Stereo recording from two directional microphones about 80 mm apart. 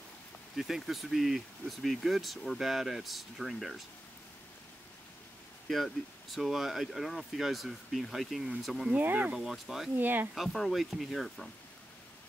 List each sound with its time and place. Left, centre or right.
0.6 s speech: centre
5.7 s speech: centre
8.9 s speech: centre
9.4 s speech: centre
9.9 s speech: right
10.3 s speech: centre